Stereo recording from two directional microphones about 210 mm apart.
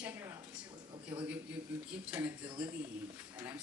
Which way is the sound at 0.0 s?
10° right (ahead or behind).